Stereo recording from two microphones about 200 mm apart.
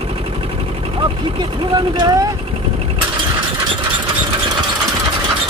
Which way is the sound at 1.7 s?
20° right (ahead or behind).